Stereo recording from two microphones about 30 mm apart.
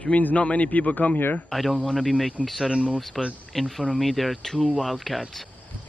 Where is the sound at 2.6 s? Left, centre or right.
Right.